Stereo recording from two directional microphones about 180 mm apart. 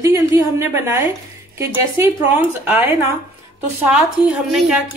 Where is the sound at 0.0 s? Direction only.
15° right (ahead or behind).